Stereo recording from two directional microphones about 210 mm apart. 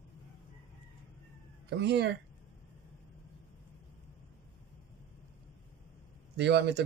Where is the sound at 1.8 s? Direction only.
55° right (ahead or behind).